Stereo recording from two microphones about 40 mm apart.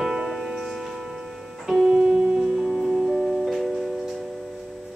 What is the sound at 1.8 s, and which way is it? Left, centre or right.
Music, centre.